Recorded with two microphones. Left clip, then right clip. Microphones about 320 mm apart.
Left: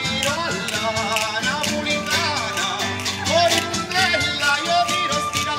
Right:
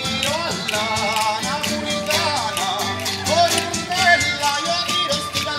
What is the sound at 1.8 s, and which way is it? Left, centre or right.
Music, right.